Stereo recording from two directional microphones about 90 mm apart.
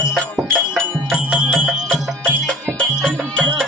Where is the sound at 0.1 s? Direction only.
Centre (ahead or behind).